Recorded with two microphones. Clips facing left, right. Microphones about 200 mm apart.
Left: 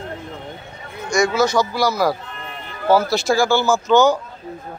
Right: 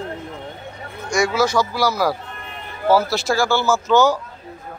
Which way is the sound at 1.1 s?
10° right (ahead or behind).